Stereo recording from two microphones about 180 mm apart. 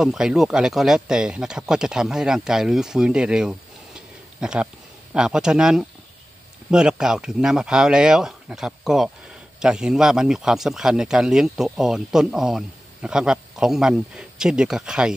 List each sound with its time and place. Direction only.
0.0 s speech: 5° right (ahead or behind)